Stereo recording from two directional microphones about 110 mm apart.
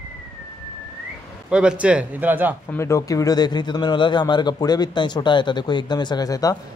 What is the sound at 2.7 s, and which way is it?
Speech, 25° left (ahead or behind).